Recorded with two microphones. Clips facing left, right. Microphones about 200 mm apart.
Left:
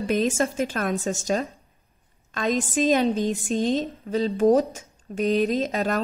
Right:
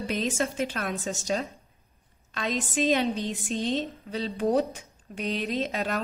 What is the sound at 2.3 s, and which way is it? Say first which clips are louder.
A woman's voice: left 5 dB; 45° left (ahead or behind).